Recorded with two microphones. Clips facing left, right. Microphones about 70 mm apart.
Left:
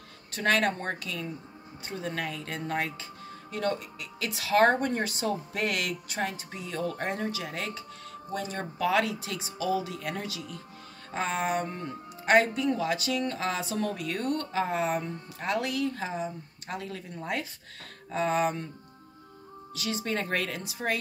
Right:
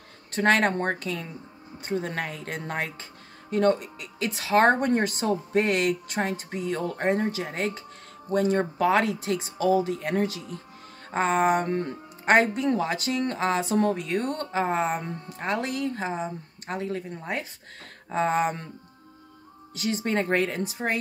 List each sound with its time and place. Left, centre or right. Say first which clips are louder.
0.3 s speech: right 4 dB; right
11.6 s speech: right 8 dB; right
12.3 s speech: right 2 dB; right
19.7 s speech: right 5 dB; right